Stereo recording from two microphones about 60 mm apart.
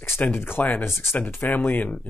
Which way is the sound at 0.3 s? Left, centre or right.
Left.